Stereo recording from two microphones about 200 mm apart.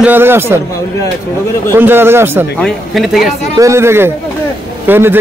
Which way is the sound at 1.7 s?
10° right (ahead or behind).